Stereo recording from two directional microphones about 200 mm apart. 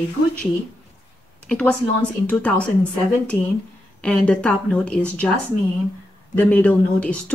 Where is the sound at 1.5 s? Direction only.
5° left (ahead or behind).